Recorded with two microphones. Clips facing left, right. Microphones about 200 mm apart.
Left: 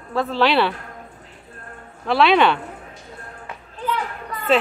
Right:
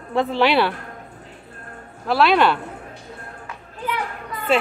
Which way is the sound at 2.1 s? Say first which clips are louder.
Left 1 dB; 5° right (ahead or behind).